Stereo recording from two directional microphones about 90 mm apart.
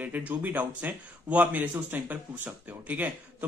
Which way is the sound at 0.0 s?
20° right (ahead or behind).